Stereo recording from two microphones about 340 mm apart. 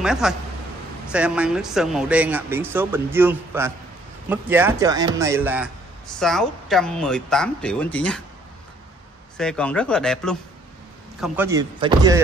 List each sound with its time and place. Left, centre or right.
0.0 s speech: centre
9.4 s speech: centre